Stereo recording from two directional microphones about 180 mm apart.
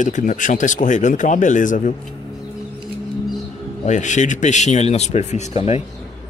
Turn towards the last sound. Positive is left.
turn(degrees=40)  # may be behind; listen again after turning